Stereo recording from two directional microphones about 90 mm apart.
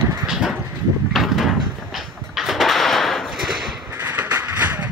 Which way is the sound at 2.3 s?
Centre (ahead or behind).